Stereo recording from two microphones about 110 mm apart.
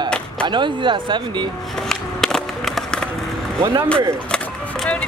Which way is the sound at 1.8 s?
5° left (ahead or behind).